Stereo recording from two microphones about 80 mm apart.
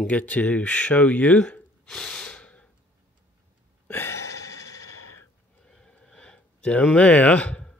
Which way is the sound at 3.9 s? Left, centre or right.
Left.